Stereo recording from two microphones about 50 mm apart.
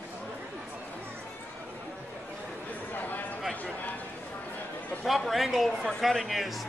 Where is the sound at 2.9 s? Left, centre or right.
Left.